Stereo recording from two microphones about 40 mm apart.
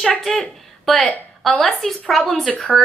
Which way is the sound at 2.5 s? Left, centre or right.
Left.